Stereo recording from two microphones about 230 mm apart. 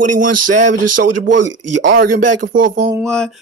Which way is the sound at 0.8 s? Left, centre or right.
Right.